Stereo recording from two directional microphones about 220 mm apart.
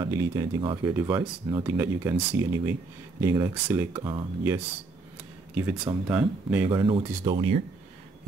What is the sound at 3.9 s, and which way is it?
Speech, 20° right (ahead or behind).